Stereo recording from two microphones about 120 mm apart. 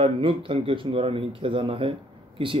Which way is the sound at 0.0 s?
45° right (ahead or behind).